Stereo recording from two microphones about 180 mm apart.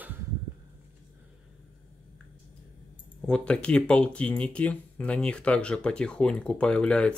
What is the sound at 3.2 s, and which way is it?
Speech, 5° left (ahead or behind).